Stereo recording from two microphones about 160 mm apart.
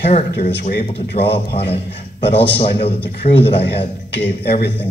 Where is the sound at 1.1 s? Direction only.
35° left (ahead or behind).